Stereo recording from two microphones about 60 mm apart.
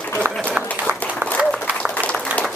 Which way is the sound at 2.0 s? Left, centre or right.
Left.